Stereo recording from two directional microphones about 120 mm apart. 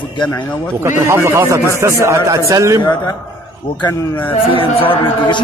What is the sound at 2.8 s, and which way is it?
Speech, 30° left (ahead or behind).